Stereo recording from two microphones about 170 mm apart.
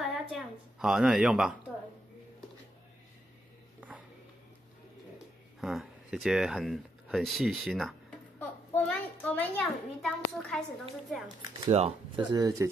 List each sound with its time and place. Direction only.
0.0 s a woman's voice: centre (ahead or behind)
5.6 s speech: centre (ahead or behind)
8.4 s a child's voice: 10° left (ahead or behind)
11.7 s speech: 40° right (ahead or behind)
12.3 s speech: 20° right (ahead or behind)